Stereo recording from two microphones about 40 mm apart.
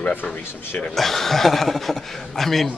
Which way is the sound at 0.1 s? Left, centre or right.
Left.